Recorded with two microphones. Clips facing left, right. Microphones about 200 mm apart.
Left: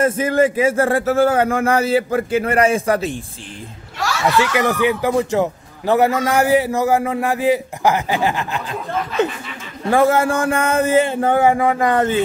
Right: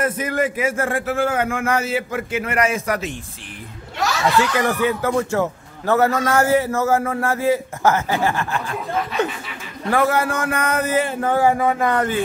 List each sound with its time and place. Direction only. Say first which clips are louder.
0.0 s a man's voice: left 5 dB; 30° left (ahead or behind)
4.4 s a man's voice: left 3 dB; 15° left (ahead or behind)
9.8 s a man's voice: left 4 dB; 25° left (ahead or behind)